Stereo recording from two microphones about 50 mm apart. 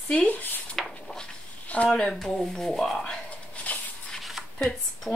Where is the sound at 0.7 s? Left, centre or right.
Centre.